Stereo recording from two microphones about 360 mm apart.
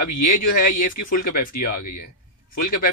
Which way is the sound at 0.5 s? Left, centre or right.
Left.